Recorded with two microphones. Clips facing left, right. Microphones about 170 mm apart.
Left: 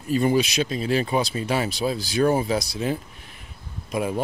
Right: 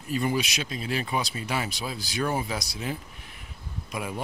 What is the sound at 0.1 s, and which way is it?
Speech, 30° left (ahead or behind).